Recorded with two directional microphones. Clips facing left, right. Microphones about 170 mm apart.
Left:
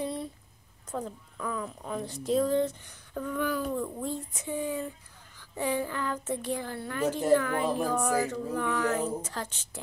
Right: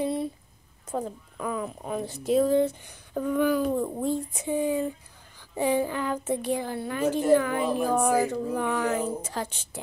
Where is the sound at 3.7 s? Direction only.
35° right (ahead or behind).